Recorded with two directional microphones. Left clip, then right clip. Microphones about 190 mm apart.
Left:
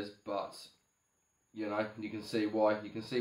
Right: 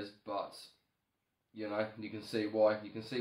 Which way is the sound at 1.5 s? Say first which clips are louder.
Left 1 dB; centre (ahead or behind).